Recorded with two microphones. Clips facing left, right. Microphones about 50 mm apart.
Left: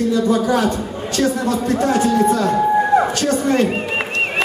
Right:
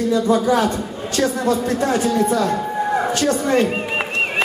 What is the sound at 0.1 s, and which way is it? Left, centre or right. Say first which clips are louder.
A man's voice: right 3 dB; right.